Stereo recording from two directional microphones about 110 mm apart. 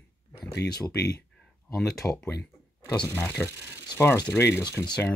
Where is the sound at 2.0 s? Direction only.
5° left (ahead or behind).